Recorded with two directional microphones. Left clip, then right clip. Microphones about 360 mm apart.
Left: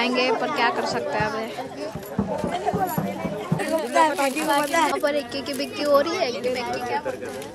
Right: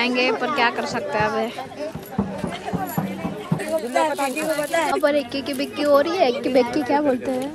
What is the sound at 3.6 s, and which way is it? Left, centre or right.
A woman's voice, centre.